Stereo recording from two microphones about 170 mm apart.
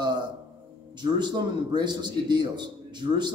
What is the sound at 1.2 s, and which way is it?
Speech, 25° right (ahead or behind).